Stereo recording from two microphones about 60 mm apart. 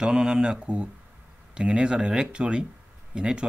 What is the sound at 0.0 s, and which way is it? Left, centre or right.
Speech, centre.